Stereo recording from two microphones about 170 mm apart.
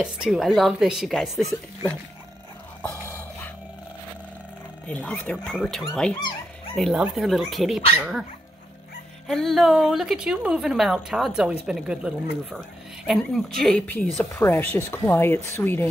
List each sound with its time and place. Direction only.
0.0 s a woman's voice: 5° right (ahead or behind)
2.8 s a sound: 15° left (ahead or behind)
4.8 s speech: 5° left (ahead or behind)
6.1 s speech: 25° left (ahead or behind)
6.7 s a woman's voice: centre (ahead or behind)
9.3 s a woman's voice: centre (ahead or behind)